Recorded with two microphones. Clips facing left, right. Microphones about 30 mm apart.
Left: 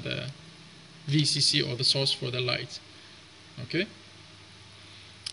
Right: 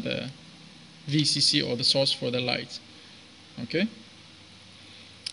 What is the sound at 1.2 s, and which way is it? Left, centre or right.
Speech, right.